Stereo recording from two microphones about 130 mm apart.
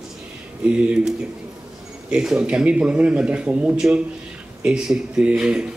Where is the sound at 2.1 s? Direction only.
5° right (ahead or behind).